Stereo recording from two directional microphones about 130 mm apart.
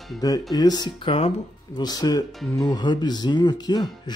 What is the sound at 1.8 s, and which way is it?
Speech, 30° left (ahead or behind).